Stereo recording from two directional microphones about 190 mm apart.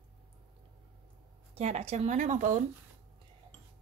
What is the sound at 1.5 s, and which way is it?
A woman's voice, 35° right (ahead or behind).